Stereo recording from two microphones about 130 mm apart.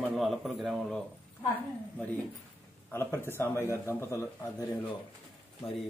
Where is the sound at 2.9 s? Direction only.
20° left (ahead or behind).